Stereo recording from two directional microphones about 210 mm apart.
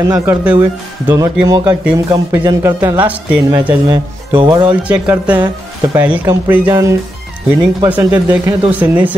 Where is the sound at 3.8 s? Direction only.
20° right (ahead or behind).